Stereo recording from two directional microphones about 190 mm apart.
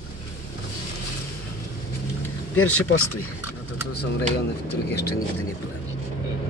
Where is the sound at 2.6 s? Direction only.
90° left.